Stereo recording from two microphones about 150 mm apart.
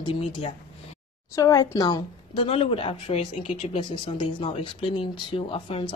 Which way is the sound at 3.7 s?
35° left (ahead or behind).